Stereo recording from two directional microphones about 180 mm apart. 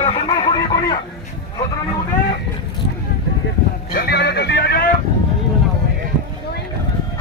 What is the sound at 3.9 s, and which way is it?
Music, 60° left (ahead or behind).